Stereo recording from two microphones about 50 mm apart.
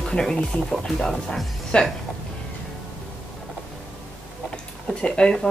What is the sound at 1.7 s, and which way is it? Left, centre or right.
Speech, left.